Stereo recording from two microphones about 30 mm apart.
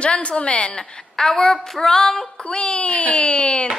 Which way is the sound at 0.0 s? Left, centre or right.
Left.